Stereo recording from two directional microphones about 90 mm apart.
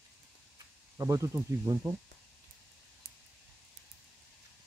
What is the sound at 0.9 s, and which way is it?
Speech, 35° right (ahead or behind).